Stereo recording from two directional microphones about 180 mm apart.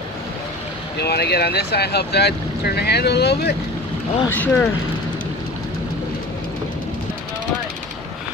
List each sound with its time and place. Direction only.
0.9 s speech: 65° left (ahead or behind)
4.3 s speech: 10° left (ahead or behind)